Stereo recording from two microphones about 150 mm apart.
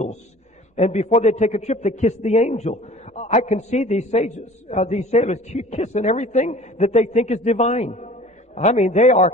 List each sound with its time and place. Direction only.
0.7 s a man's voice: 50° left (ahead or behind)